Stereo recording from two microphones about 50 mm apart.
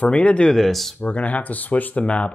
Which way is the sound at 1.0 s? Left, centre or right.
Left.